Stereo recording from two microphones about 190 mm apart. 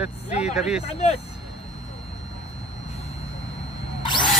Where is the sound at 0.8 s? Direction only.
35° left (ahead or behind).